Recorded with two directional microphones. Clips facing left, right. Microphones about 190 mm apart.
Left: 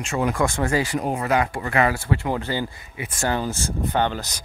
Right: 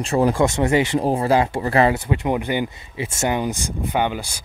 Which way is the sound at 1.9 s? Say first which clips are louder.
Right 3 dB; 20° right (ahead or behind).